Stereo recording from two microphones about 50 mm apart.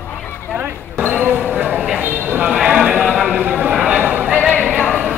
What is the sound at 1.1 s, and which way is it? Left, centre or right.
Speech, right.